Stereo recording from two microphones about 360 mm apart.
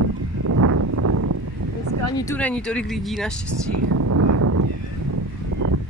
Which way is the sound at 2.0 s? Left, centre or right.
Centre.